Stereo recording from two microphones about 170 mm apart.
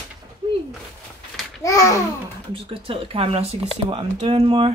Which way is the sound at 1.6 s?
15° left (ahead or behind).